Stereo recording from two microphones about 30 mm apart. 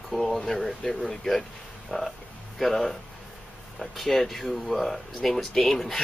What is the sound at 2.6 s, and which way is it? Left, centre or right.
Speech, centre.